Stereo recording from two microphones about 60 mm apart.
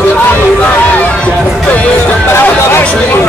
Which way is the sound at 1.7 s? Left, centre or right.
Left.